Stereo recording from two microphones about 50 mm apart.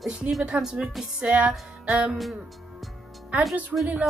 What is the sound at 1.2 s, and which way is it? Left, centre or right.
Music, centre.